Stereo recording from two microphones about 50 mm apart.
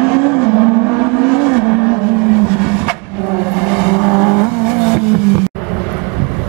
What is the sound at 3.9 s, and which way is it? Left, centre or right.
Vehicle, centre.